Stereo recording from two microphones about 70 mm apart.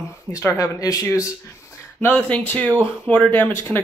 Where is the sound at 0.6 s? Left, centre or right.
Left.